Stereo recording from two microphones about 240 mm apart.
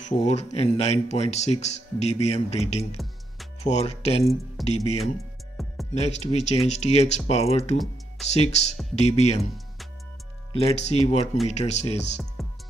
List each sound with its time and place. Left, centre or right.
0.0 s speech: left
4.6 s speech: centre
5.6 s music: centre
5.9 s speech: left
7.7 s music: centre
8.3 s speech: left
10.5 s speech: left
12.4 s music: centre